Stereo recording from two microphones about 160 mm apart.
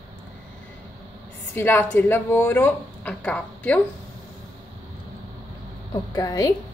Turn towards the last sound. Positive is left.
turn(degrees=20)  # may be behind; listen again after turning